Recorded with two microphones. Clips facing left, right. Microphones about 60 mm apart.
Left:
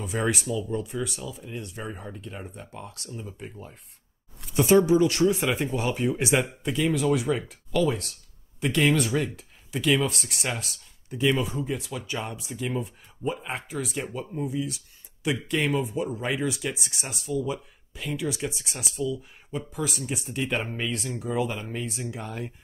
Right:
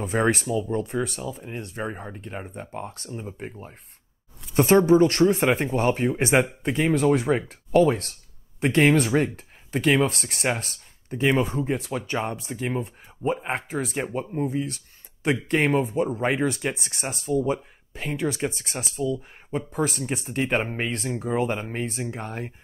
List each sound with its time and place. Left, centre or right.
0.0 s speech: right
4.6 s speech: right